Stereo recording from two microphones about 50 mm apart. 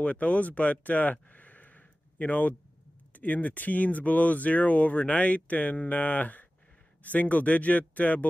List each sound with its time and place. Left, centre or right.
0.0 s speech: left